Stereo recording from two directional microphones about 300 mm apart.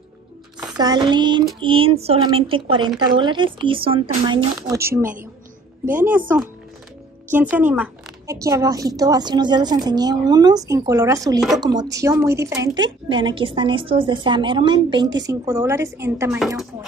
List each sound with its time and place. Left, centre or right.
0.7 s a woman's voice: centre